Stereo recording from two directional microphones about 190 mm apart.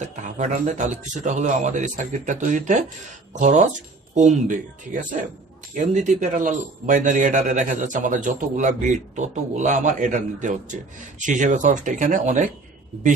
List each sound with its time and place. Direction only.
0.0 s a man's voice: 40° right (ahead or behind)